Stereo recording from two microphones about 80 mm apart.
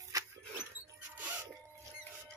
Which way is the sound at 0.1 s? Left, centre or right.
Right.